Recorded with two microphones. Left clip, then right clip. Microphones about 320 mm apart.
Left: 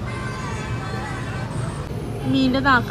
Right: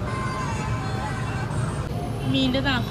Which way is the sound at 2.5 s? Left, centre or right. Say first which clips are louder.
Left 7 dB; left.